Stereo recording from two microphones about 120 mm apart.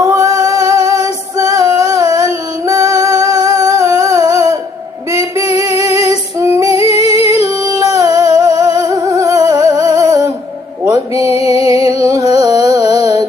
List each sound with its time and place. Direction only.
0.0 s female singing: 25° right (ahead or behind)
5.6 s female singing: 25° right (ahead or behind)
7.1 s humming: 25° right (ahead or behind)
10.9 s mantra: 25° right (ahead or behind)
11.3 s music: 55° left (ahead or behind)
11.8 s music: 30° right (ahead or behind)